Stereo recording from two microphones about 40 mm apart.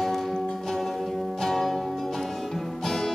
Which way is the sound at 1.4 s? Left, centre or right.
Centre.